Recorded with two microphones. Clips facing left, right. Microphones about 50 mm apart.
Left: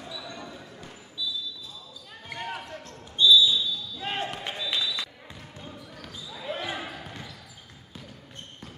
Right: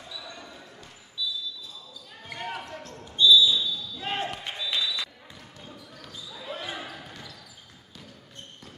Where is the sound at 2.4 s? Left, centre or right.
Centre.